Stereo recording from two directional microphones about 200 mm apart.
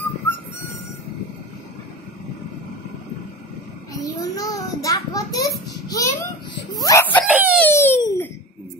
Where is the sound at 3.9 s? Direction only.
15° left (ahead or behind).